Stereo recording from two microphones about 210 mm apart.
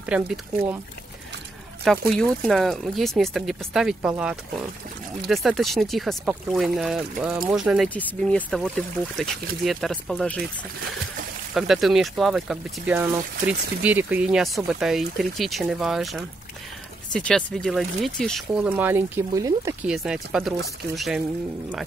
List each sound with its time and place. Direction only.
0.1 s speech: 5° right (ahead or behind)
1.9 s speech: centre (ahead or behind)
11.5 s speech: centre (ahead or behind)